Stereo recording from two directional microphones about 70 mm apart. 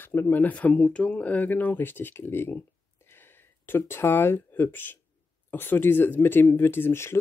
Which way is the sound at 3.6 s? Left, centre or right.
Left.